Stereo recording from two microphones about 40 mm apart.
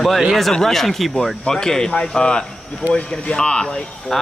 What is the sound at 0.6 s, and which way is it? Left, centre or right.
Speech, centre.